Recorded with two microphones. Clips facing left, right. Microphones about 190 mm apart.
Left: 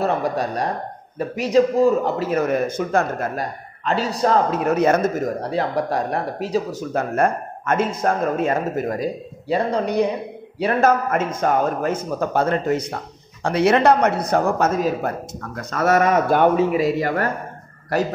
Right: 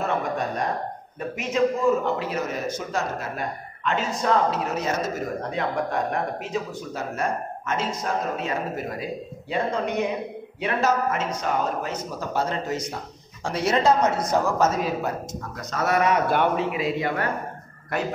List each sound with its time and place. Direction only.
0.0 s speech: 35° left (ahead or behind); by 3.3 s 55° left (ahead or behind)
3.3 s speech: 35° left (ahead or behind)
4.5 s speech: 55° left (ahead or behind)
5.4 s speech: 35° left (ahead or behind)
6.9 s speech: 55° left (ahead or behind); by 10.0 s 35° left (ahead or behind)
10.8 s speech: 55° left (ahead or behind)